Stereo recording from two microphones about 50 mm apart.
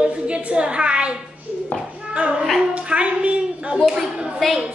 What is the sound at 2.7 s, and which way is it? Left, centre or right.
A man's voice, right.